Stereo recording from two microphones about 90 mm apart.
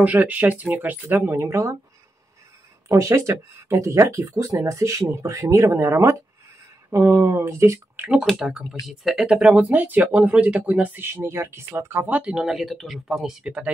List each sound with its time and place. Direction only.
0.0 s speech: 20° right (ahead or behind)
2.9 s speech: 35° right (ahead or behind)
8.1 s speech: 5° right (ahead or behind); by 12.2 s 25° right (ahead or behind)
12.2 s speech: 10° right (ahead or behind)